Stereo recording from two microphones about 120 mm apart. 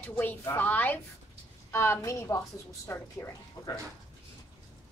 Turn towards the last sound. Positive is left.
turn(degrees=25)  # may be behind; listen again after turning